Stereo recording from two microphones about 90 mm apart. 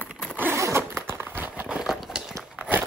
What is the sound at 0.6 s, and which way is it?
Zipper, 30° right (ahead or behind).